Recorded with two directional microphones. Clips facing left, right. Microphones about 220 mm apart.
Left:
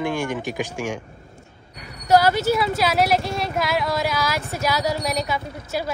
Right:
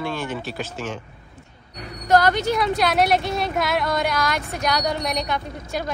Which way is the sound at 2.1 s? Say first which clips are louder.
Left 1 dB; 5° left (ahead or behind).